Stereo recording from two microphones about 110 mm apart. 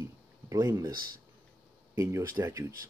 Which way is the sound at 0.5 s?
30° right (ahead or behind).